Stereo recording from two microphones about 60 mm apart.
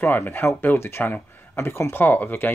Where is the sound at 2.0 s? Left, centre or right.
Left.